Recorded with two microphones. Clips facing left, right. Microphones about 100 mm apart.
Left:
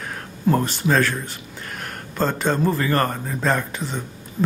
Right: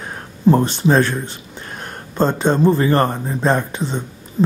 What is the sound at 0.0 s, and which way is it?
Speech, 25° right (ahead or behind).